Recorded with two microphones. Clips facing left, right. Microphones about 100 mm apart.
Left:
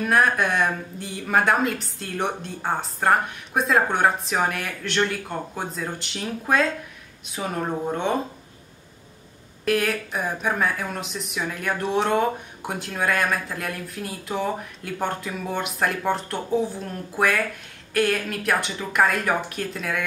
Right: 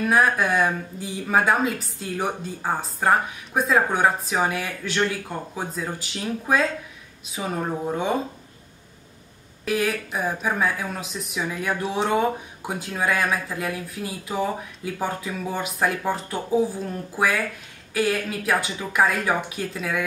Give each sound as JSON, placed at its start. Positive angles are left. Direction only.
{"t": 0.0, "sound": "speech", "side_deg": 0}
{"t": 9.7, "sound": "speech", "side_deg": 0}